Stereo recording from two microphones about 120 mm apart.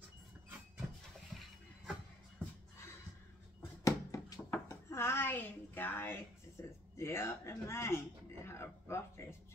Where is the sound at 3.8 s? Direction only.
25° left (ahead or behind).